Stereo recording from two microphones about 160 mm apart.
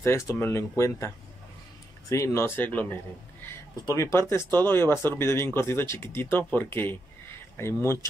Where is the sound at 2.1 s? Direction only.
20° left (ahead or behind).